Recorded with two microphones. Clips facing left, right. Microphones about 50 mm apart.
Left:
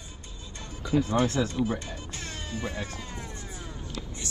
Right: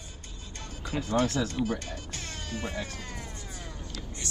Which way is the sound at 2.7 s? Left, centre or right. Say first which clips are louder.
Even; left.